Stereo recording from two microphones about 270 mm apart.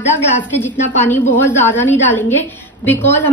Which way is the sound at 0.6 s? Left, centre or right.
Centre.